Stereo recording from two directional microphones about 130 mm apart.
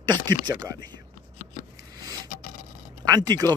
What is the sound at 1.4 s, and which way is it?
Shuffling cards, 70° left (ahead or behind).